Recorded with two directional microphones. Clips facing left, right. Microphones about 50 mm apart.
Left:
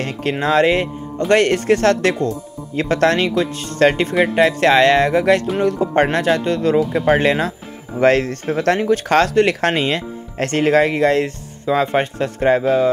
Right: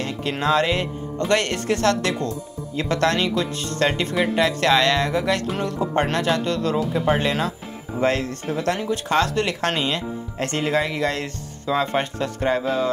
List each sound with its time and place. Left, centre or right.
0.0 s speech: left
6.9 s speech: left